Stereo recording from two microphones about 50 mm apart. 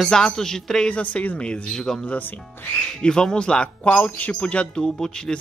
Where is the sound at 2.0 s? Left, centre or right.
Left.